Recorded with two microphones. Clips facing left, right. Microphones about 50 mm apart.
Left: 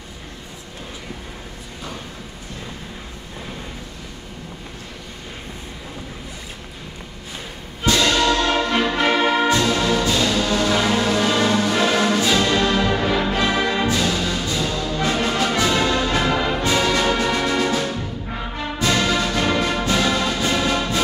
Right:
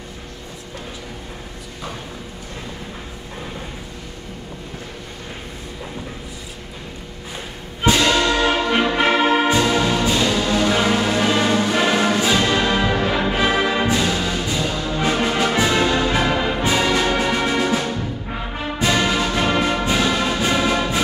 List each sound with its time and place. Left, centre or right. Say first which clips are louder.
7.8 s music: right 1 dB; centre